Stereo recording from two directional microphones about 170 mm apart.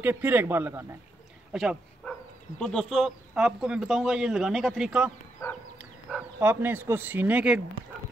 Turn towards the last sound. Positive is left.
turn(degrees=-5)  # may be behind; listen again after turning